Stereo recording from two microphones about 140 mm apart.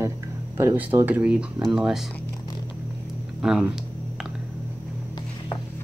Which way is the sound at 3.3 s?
5° right (ahead or behind).